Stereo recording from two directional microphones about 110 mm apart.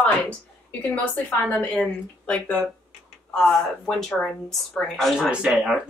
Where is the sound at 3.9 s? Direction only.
5° left (ahead or behind).